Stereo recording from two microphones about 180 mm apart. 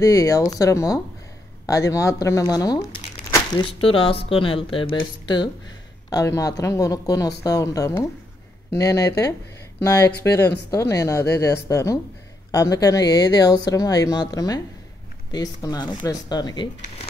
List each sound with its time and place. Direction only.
0.0 s speech: 20° left (ahead or behind)
3.8 s speech: 30° left (ahead or behind)